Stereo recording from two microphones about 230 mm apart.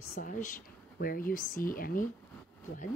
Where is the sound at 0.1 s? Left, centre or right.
Left.